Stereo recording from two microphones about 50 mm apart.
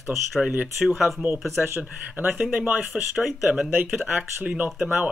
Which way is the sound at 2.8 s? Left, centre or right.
Centre.